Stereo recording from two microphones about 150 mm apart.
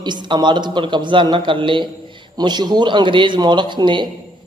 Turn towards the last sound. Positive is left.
turn(degrees=-30)  # may be behind; listen again after turning